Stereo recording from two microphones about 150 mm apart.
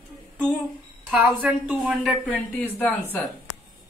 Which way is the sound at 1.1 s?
5° right (ahead or behind).